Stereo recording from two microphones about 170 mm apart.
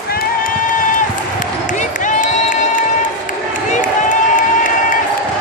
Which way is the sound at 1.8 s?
45° left (ahead or behind).